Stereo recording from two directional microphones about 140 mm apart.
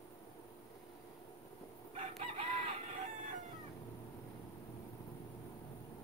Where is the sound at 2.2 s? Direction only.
45° right (ahead or behind).